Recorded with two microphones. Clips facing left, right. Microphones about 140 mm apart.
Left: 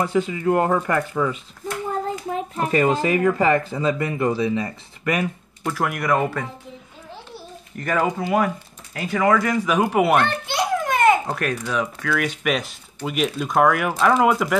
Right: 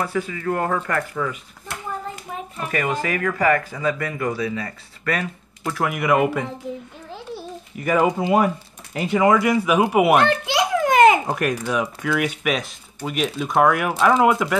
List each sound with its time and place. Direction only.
0.0 s speech: 20° left (ahead or behind)
2.6 s speech: 25° left (ahead or behind)
5.6 s speech: centre (ahead or behind)
7.7 s speech: 10° right (ahead or behind)
8.2 s speech: 20° right (ahead or behind); by 10.2 s 5° right (ahead or behind)
10.2 s a sound: 90° right
11.2 s speech: 10° right (ahead or behind)